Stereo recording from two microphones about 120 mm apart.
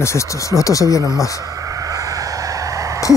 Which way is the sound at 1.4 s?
30° right (ahead or behind).